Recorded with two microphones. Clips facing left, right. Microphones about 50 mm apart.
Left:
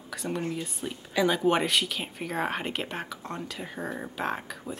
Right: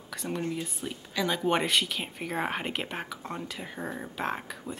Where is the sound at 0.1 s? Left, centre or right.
Centre.